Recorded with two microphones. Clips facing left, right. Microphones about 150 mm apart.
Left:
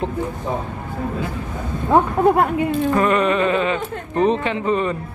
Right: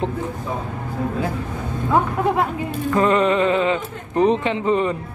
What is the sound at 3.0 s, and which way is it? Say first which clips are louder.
Speech: right 3 dB; 20° right (ahead or behind).